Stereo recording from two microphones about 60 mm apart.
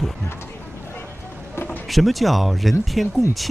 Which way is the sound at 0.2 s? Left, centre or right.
Left.